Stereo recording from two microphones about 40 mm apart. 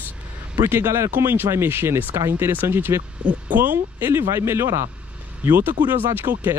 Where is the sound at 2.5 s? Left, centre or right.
Right.